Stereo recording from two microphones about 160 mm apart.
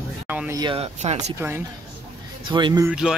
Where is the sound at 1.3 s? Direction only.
15° right (ahead or behind).